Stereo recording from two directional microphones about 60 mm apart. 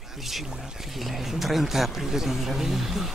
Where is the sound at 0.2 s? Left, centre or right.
Centre.